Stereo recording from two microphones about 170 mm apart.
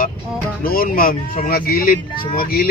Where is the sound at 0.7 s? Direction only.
60° left (ahead or behind).